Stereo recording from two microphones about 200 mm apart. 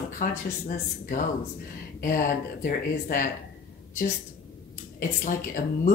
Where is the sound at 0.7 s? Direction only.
45° left (ahead or behind).